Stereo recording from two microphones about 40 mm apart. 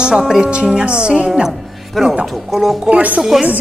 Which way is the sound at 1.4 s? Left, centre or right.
Centre.